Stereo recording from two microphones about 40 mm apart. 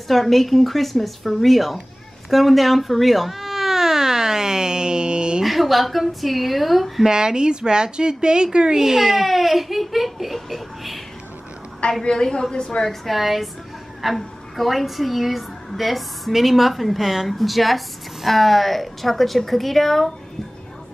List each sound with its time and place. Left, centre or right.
0.1 s a woman's voice: centre
2.2 s baby cry: centre; by 5.4 s right
5.4 s a woman's voice: centre
7.1 s a woman's voice: centre
12.0 s a woman's voice: left
12.8 s a woman's voice: centre